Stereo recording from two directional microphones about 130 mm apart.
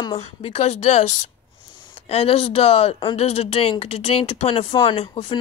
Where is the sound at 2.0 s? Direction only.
50° left (ahead or behind).